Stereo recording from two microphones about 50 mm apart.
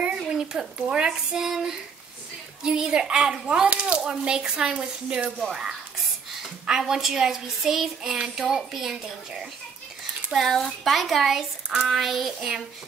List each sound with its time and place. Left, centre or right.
0.0 s a child's voice: centre
10.3 s speech: centre